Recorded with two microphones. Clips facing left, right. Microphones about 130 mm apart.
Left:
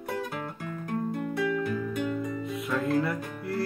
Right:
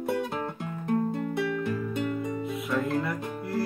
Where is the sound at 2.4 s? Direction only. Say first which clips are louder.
Even; centre (ahead or behind).